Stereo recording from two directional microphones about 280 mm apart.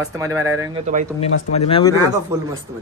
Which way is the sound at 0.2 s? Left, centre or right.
Centre.